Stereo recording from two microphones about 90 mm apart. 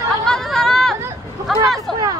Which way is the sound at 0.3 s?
5° left (ahead or behind).